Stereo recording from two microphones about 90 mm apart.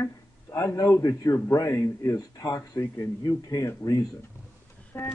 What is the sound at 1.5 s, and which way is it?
Speech, 35° left (ahead or behind).